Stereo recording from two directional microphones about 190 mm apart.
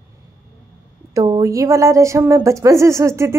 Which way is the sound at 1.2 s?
20° right (ahead or behind).